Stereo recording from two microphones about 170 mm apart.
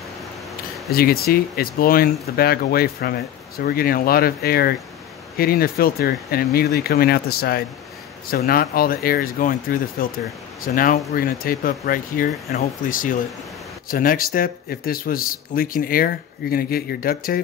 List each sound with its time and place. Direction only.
0.9 s speech: 65° left (ahead or behind)